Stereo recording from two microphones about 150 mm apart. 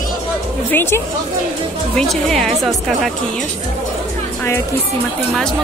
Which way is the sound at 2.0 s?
5° left (ahead or behind).